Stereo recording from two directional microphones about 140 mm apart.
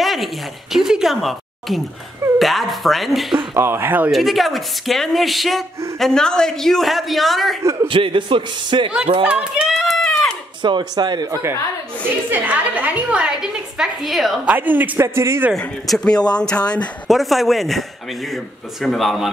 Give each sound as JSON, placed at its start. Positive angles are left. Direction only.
{"t": 0.0, "sound": "a woman's voice", "side_deg": 0}
{"t": 3.5, "sound": "a woman's voice", "side_deg": -15}
{"t": 4.1, "sound": "a man's voice", "side_deg": 0}
{"t": 7.9, "sound": "a man's voice", "side_deg": -40}
{"t": 9.2, "sound": "speech", "side_deg": -10}
{"t": 10.6, "sound": "a man's voice", "side_deg": -35}
{"t": 12.1, "sound": "a woman's voice", "side_deg": -10}
{"t": 14.4, "sound": "a woman's voice", "side_deg": -10}
{"t": 15.5, "sound": "a man's voice", "side_deg": 5}